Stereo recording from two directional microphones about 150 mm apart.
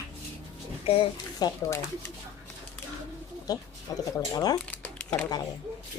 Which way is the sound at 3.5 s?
25° left (ahead or behind).